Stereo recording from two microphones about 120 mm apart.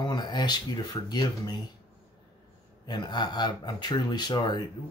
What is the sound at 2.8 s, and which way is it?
Speech, 40° left (ahead or behind).